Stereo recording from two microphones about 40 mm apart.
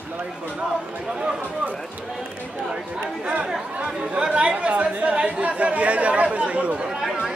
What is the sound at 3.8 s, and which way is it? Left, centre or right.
Speech, right.